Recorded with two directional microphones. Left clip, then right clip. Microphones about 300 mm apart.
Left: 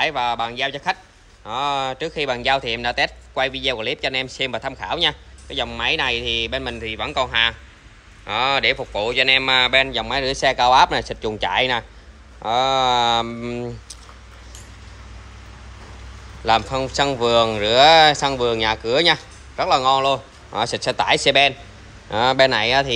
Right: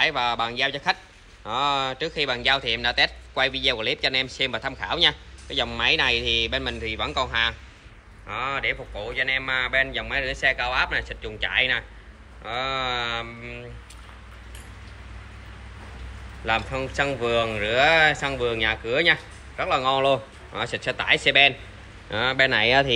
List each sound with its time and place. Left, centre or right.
0.0 s speech: centre
16.4 s speech: centre